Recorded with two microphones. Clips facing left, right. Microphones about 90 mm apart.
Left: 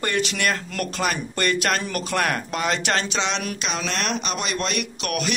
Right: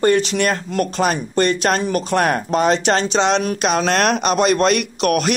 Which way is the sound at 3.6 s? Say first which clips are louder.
Right 11 dB; 55° right (ahead or behind).